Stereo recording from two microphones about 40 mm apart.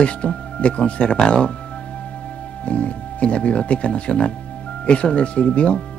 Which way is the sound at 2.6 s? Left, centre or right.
Left.